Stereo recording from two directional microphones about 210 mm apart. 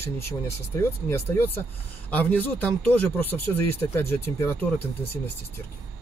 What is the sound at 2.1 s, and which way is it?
Speech, 5° left (ahead or behind).